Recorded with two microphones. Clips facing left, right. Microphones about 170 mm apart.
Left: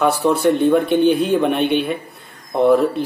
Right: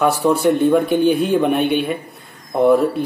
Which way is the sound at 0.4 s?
Centre (ahead or behind).